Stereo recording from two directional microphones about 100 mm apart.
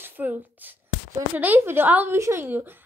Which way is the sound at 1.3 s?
20° right (ahead or behind).